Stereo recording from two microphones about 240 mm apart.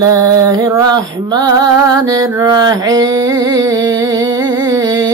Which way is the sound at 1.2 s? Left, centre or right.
Centre.